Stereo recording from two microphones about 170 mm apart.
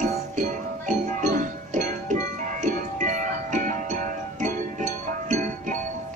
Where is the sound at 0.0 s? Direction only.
45° right (ahead or behind).